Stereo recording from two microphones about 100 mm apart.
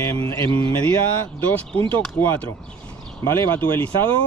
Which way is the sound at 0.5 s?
60° right (ahead or behind).